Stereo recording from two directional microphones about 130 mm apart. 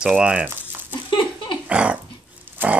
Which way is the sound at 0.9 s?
40° left (ahead or behind).